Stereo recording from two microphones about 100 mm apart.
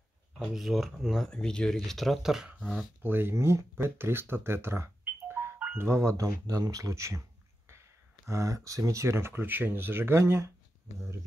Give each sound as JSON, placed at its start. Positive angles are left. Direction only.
{"t": 0.4, "sound": "speech", "side_deg": 0}
{"t": 3.0, "sound": "speech", "side_deg": -20}